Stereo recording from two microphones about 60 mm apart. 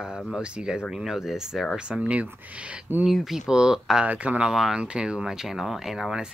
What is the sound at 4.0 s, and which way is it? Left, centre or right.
Speech, right.